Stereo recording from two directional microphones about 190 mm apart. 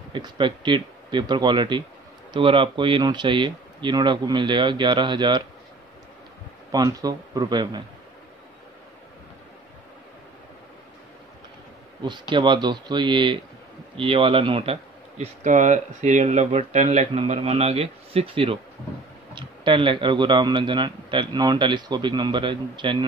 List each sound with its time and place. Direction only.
0.1 s speech: 25° right (ahead or behind)
6.7 s speech: 20° right (ahead or behind)
12.0 s speech: 25° right (ahead or behind)